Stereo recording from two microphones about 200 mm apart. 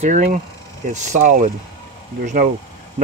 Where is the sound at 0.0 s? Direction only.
40° right (ahead or behind).